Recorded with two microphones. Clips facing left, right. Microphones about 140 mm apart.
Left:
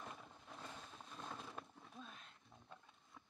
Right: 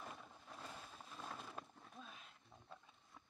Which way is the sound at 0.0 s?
Centre (ahead or behind).